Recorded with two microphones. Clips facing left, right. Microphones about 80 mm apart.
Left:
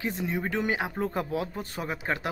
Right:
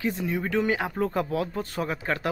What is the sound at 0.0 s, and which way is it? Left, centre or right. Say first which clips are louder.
Speech: right 2 dB; left.